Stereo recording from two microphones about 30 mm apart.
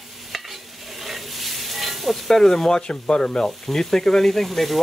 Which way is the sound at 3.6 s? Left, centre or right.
Centre.